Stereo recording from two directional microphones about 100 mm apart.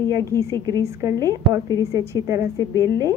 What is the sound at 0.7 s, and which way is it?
A woman's voice, 35° right (ahead or behind).